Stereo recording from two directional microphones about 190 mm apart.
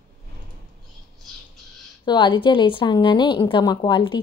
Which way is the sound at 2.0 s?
25° left (ahead or behind).